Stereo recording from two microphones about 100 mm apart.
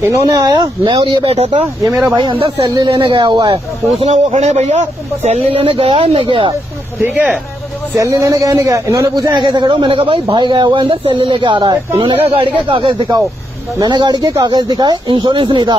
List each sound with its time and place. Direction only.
0.3 s speech: 40° right (ahead or behind)
1.0 s speech: 60° right (ahead or behind); by 1.7 s 90° right
1.9 s speech: 25° right (ahead or behind)
3.0 s speech: 50° right (ahead or behind)
3.5 s speech: 80° right; by 6.5 s 60° right (ahead or behind)
7.0 s speech: 20° right (ahead or behind)
7.9 s speech: 30° right (ahead or behind)
9.3 s speech: 50° right (ahead or behind)
11.7 s speech: 35° right (ahead or behind)
12.1 s speech: 65° right (ahead or behind)
13.7 s speech: 45° right (ahead or behind)